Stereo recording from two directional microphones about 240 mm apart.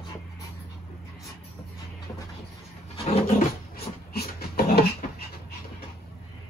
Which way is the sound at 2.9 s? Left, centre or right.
Left.